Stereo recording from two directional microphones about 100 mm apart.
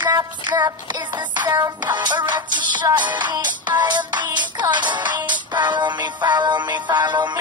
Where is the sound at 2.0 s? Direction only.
50° right (ahead or behind).